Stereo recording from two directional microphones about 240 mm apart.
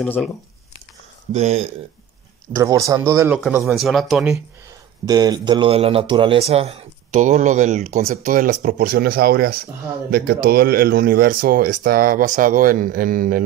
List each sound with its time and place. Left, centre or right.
0.0 s speech: centre
1.3 s a man's voice: right
2.5 s speech: centre
5.0 s a man's voice: centre; by 13.4 s right